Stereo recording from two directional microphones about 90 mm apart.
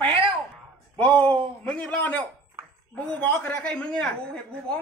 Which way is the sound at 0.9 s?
15° left (ahead or behind).